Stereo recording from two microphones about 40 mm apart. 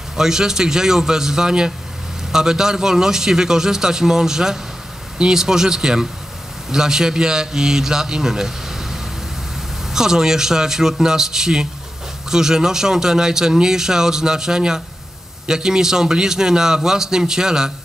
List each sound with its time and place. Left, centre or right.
0.1 s speech: centre